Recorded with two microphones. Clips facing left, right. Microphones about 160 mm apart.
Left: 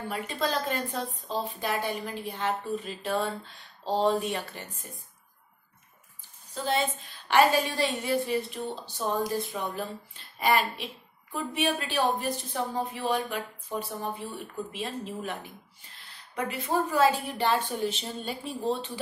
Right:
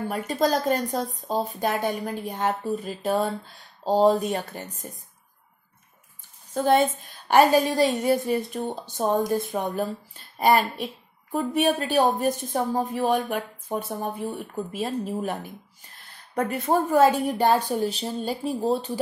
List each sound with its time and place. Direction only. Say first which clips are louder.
0.1 s a woman's voice: right 6 dB; 40° right (ahead or behind)
6.5 s a woman's voice: right 8 dB; 50° right (ahead or behind)
16.3 s a woman's voice: right 5 dB; 50° right (ahead or behind)